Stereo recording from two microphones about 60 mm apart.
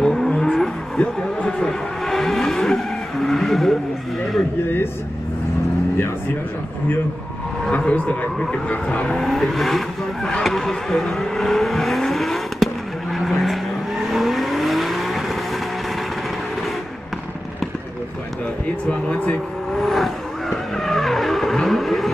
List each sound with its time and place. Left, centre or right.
0.0 s vehicle: centre
7.7 s a sound: left
8.6 s speech: centre
9.1 s vehicle: centre
18.9 s vehicle: centre
19.7 s vehicle: centre